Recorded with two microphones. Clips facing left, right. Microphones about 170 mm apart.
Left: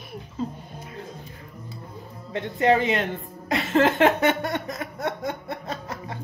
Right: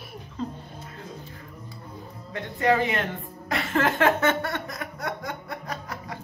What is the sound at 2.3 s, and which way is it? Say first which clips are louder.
Speech: left 3 dB; 20° left (ahead or behind).